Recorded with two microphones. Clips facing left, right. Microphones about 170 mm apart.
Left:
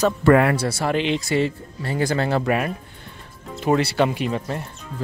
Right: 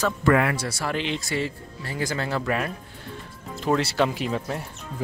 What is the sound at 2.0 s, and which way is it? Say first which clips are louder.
Speech: left 6 dB; 60° left (ahead or behind).